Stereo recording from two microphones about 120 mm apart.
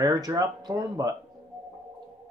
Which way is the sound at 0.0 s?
30° right (ahead or behind).